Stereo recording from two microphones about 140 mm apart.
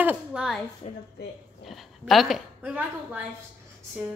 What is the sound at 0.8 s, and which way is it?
Speech, 45° left (ahead or behind).